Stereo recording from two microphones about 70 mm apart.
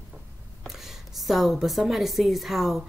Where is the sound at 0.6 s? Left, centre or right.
Centre.